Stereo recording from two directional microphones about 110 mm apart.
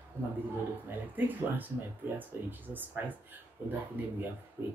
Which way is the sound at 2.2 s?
15° right (ahead or behind).